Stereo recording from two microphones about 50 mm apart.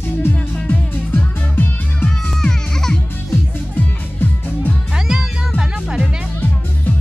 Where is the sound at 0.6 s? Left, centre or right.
Left.